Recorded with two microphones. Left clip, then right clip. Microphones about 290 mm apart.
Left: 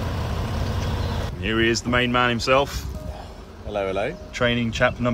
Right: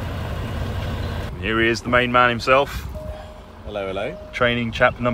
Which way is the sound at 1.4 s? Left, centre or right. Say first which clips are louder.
Right 2 dB; centre.